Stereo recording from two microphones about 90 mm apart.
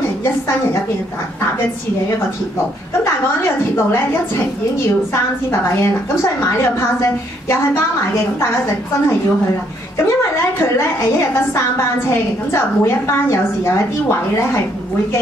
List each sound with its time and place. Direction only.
3.4 s a woman's voice: 25° left (ahead or behind)
5.1 s a woman's voice: 30° left (ahead or behind)
10.6 s a woman's voice: 30° left (ahead or behind)